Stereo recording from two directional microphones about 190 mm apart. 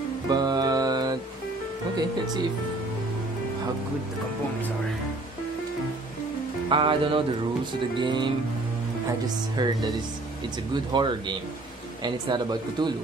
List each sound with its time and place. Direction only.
0.3 s music: 20° right (ahead or behind)
2.0 s speech: 20° right (ahead or behind)
6.7 s speech: 25° right (ahead or behind)
9.6 s speech: 20° right (ahead or behind)